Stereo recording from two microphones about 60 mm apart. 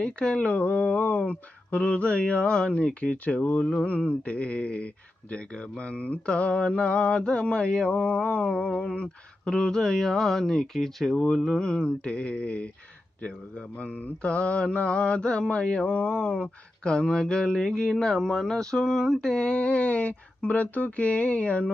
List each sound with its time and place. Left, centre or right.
0.0 s mantra: centre
0.5 s a sound: left
7.9 s mantra: centre
13.7 s mantra: left